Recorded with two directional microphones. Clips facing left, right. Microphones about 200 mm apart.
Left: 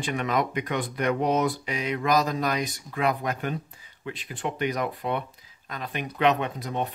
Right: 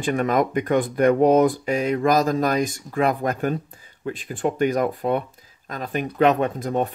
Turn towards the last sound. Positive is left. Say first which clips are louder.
# right 7 dB
turn(degrees=-45)  # may be behind; listen again after turning